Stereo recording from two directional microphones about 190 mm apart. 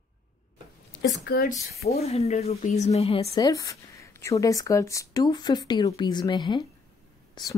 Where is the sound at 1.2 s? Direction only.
55° left (ahead or behind).